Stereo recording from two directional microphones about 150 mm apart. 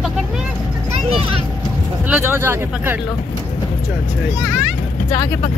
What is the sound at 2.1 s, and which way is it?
Speech, 15° right (ahead or behind).